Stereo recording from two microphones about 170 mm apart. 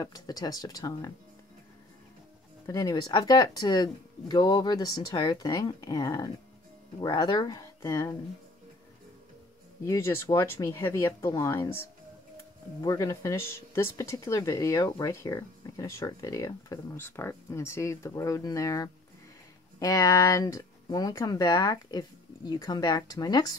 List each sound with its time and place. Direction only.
0.0 s speech: 20° left (ahead or behind)
2.6 s speech: 20° left (ahead or behind)
9.8 s speech: 15° left (ahead or behind)
12.8 s speech: 20° left (ahead or behind)